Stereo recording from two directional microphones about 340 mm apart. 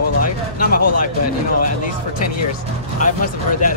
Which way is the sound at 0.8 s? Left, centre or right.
Left.